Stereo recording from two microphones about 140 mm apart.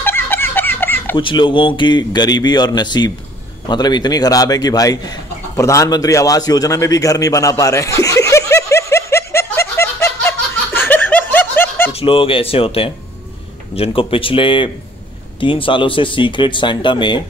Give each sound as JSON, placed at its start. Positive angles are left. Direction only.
{"t": 0.0, "sound": "a sound", "side_deg": 15}
{"t": 1.1, "sound": "a man's voice", "side_deg": 35}
{"t": 3.6, "sound": "chicken", "side_deg": 30}
{"t": 11.9, "sound": "a man's voice", "side_deg": 40}